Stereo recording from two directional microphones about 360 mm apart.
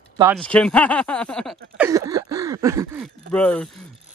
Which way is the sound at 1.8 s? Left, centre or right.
Centre.